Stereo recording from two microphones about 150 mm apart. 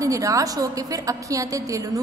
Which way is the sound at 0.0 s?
20° right (ahead or behind).